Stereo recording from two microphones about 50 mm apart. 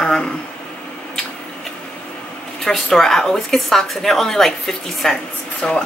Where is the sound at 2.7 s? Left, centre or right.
Centre.